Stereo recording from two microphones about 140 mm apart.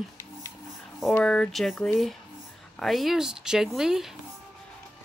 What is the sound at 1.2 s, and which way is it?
Speech, 5° left (ahead or behind).